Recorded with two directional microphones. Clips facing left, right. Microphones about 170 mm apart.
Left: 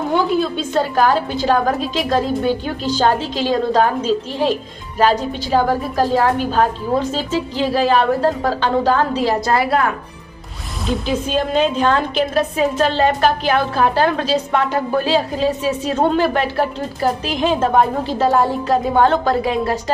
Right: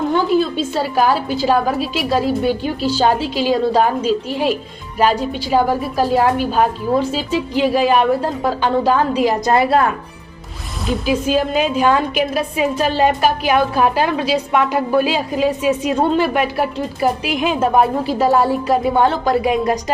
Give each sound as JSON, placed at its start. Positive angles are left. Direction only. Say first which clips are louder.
{"t": 0.3, "sound": "a woman's voice", "louder": "right 2 dB", "side_deg": 0}
{"t": 10.9, "sound": "a woman's voice", "louder": "right 3 dB", "side_deg": -5}